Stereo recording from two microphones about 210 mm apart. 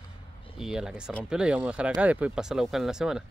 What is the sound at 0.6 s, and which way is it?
Speech, 5° right (ahead or behind).